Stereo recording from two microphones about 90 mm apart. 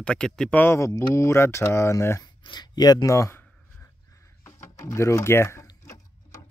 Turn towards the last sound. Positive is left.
turn(degrees=30)  # may be behind; listen again after turning